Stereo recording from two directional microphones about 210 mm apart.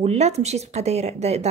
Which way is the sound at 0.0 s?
30° right (ahead or behind).